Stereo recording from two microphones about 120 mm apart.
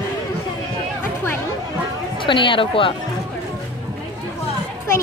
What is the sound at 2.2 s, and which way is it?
Speech, 45° left (ahead or behind).